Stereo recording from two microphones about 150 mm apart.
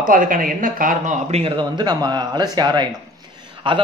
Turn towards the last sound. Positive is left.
turn(degrees=-35)  # may be behind; listen again after turning